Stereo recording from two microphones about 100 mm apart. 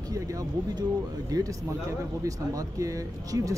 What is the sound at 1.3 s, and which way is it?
Speech, 40° right (ahead or behind).